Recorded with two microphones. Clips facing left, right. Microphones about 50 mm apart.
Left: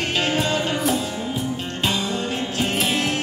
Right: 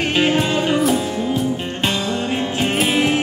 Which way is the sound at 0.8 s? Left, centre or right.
Centre.